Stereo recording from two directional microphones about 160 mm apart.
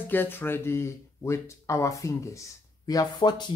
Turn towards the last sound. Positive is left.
turn(degrees=25)  # may be behind; listen again after turning